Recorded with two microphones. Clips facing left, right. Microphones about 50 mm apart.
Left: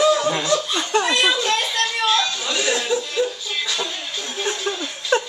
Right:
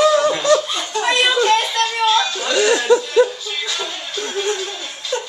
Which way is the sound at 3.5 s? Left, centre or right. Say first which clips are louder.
Even; centre.